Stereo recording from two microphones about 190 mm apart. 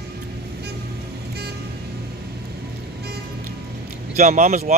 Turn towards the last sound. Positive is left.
turn(degrees=-40)  # may be behind; listen again after turning